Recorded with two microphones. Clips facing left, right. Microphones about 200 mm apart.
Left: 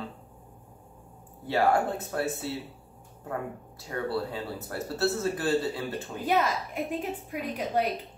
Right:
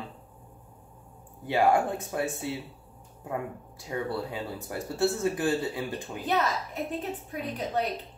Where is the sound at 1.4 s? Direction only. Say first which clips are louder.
Right 1 dB; 15° right (ahead or behind).